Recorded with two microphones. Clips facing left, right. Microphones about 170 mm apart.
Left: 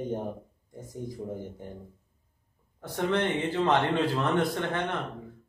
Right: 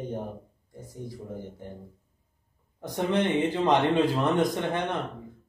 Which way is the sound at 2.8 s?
15° right (ahead or behind).